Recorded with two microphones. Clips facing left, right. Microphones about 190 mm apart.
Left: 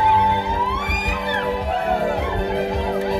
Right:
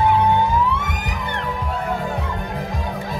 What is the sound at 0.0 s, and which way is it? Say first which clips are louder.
Music: right 2 dB; 65° left (ahead or behind).